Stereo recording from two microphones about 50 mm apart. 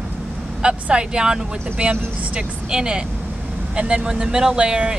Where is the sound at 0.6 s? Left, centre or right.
Centre.